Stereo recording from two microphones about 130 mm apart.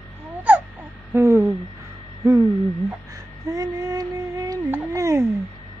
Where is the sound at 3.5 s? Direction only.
25° right (ahead or behind).